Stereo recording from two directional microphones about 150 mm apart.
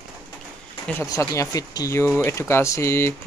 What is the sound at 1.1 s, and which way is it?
Speech, 20° left (ahead or behind).